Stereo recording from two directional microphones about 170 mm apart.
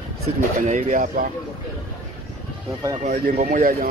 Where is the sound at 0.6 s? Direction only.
50° right (ahead or behind).